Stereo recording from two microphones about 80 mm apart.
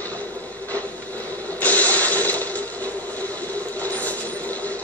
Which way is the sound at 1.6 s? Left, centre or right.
Centre.